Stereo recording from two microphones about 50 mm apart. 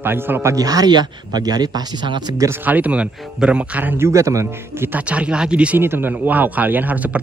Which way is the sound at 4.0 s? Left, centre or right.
Right.